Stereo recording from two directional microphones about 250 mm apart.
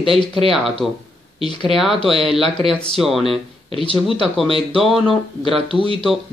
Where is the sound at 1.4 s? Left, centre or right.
Centre.